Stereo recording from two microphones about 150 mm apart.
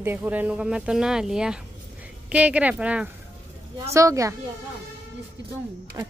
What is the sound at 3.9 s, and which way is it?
Speech, 20° right (ahead or behind).